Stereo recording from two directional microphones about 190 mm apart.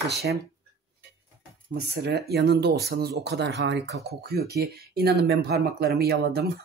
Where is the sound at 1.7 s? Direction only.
55° right (ahead or behind).